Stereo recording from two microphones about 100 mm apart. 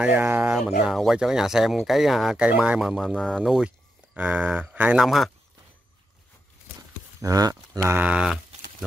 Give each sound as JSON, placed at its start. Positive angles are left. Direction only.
{"t": 0.0, "sound": "speech", "side_deg": -20}
{"t": 0.6, "sound": "speech", "side_deg": -5}
{"t": 5.0, "sound": "speech", "side_deg": 0}
{"t": 7.2, "sound": "speech", "side_deg": -35}
{"t": 7.9, "sound": "speech", "side_deg": -15}